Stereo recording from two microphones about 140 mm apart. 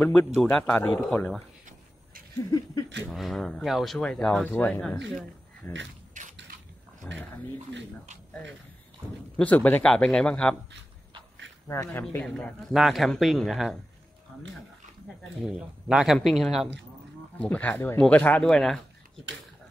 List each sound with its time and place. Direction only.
0.0 s speech: 15° left (ahead or behind)
3.1 s speech: centre (ahead or behind)
6.2 s a sound: 65° right (ahead or behind)
7.0 s speech: 10° left (ahead or behind)
9.4 s speech: 10° left (ahead or behind)
11.6 s speech: 20° left (ahead or behind)
12.7 s speech: centre (ahead or behind)
15.4 s speech: 5° right (ahead or behind)